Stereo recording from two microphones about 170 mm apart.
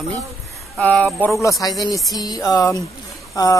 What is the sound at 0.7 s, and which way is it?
Speech, 10° left (ahead or behind).